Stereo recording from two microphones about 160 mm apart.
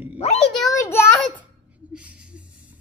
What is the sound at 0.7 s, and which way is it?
Speech, 15° left (ahead or behind).